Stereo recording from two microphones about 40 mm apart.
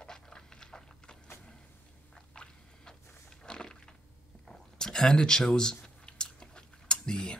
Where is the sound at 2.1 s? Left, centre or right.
Centre.